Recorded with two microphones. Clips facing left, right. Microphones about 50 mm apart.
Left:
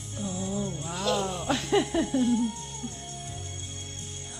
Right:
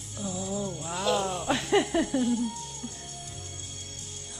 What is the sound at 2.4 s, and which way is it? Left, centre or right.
Music, left.